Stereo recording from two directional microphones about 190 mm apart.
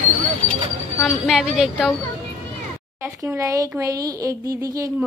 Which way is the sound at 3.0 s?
15° right (ahead or behind).